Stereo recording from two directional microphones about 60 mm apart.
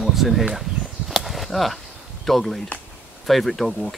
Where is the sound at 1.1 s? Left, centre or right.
Centre.